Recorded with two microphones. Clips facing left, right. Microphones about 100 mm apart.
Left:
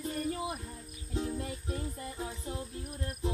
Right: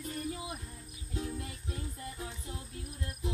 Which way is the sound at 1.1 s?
30° left (ahead or behind).